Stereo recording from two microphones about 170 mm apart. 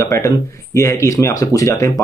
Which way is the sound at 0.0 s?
15° left (ahead or behind).